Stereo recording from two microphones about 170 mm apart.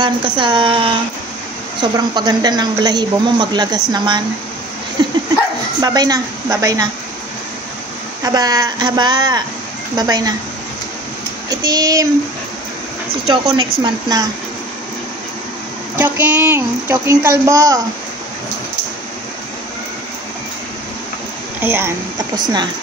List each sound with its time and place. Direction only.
0.0 s speech: 30° right (ahead or behind)
5.0 s dog: 25° right (ahead or behind)
5.8 s speech: 25° right (ahead or behind)
8.2 s speech: 25° right (ahead or behind)
11.7 s speech: 20° right (ahead or behind)
13.3 s speech: 30° right (ahead or behind)
16.0 s a woman's voice: 10° right (ahead or behind)
21.6 s a woman's voice: 15° right (ahead or behind)